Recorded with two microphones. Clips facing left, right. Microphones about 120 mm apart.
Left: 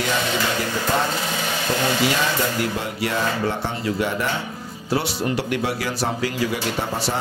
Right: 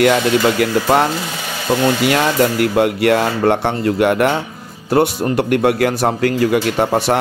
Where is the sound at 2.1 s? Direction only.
65° right (ahead or behind).